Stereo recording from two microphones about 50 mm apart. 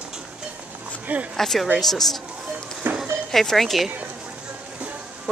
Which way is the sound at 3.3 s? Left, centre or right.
Centre.